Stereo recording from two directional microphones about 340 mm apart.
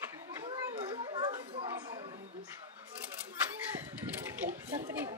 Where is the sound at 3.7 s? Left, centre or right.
Centre.